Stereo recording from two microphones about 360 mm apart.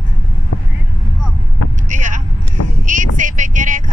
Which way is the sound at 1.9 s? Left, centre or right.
Right.